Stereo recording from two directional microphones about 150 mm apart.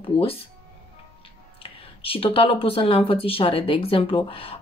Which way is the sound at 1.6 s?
40° left (ahead or behind).